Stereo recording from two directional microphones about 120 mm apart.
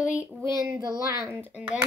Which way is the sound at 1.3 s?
15° right (ahead or behind).